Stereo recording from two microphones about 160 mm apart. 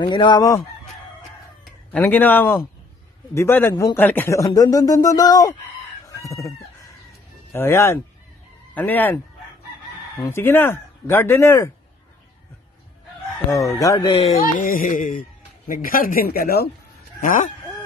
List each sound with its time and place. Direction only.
0.0 s a man's voice: 30° left (ahead or behind)
1.9 s a man's voice: 10° left (ahead or behind)
7.5 s speech: 15° left (ahead or behind)
13.7 s a man's voice: 25° left (ahead or behind)
14.1 s speech: 40° left (ahead or behind)
14.4 s speech: 55° left (ahead or behind)
17.2 s speech: 55° left (ahead or behind)